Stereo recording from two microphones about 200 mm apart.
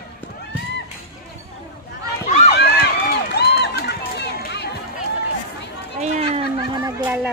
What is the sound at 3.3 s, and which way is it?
Run, 55° left (ahead or behind).